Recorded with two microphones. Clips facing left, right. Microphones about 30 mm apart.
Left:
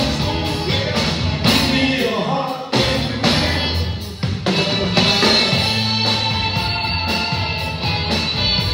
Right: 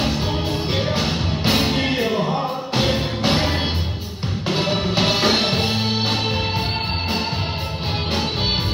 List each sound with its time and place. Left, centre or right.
0.7 s music: left
4.5 s music: left